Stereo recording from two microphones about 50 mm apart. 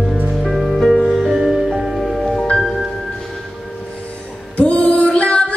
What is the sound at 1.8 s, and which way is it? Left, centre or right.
Music, centre.